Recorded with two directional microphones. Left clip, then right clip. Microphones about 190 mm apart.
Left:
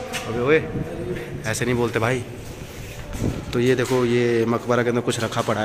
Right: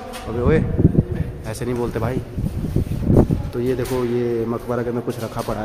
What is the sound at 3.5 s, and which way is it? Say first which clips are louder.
Speech: left 7 dB; centre (ahead or behind).